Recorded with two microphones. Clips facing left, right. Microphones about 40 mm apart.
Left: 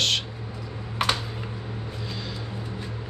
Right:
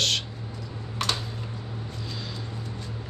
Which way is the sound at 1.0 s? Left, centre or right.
Centre.